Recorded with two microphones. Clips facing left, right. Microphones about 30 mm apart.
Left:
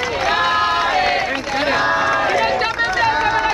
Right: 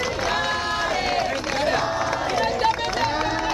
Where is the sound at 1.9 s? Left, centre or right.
Left.